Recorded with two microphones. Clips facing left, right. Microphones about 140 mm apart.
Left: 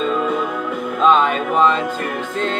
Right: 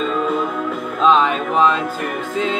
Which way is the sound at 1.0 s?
Centre (ahead or behind).